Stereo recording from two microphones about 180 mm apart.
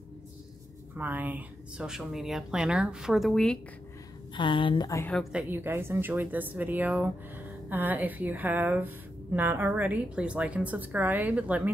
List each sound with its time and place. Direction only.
0.9 s speech: 10° right (ahead or behind)
4.4 s speech: 25° left (ahead or behind)
5.3 s a woman's voice: 10° right (ahead or behind)